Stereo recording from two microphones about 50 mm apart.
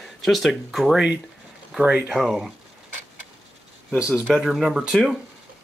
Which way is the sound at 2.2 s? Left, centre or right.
Centre.